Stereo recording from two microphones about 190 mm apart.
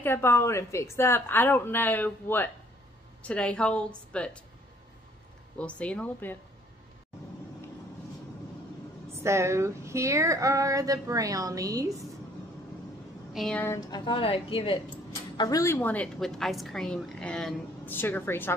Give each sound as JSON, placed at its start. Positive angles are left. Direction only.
{"t": 0.0, "sound": "a woman's voice", "side_deg": 10}
{"t": 5.6, "sound": "a woman's voice", "side_deg": 5}
{"t": 9.2, "sound": "speech", "side_deg": -15}
{"t": 13.3, "sound": "a woman's voice", "side_deg": 5}
{"t": 13.7, "sound": "a woman's voice", "side_deg": 20}